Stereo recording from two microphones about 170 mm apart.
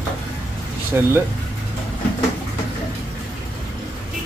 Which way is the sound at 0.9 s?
10° right (ahead or behind).